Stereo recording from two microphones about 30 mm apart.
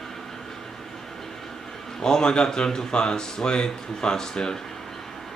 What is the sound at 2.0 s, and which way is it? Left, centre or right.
Speech, left.